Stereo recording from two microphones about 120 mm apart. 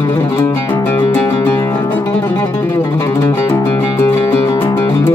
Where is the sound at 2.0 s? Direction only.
20° left (ahead or behind).